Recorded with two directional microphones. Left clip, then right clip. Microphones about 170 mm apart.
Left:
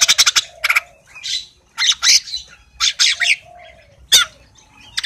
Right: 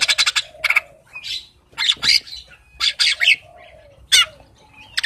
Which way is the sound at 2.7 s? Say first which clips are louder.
Left 2 dB; centre (ahead or behind).